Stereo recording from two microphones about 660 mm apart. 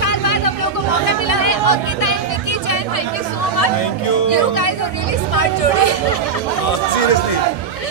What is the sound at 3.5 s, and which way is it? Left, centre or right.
Chatter, left.